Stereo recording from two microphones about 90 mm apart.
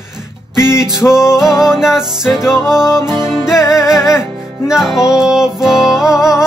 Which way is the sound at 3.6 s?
35° left (ahead or behind).